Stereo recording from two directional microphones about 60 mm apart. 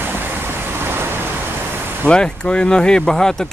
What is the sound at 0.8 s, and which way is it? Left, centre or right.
Vehicle, right.